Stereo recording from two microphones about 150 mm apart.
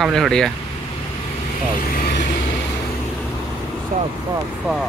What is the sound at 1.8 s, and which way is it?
Vehicle, 70° left (ahead or behind).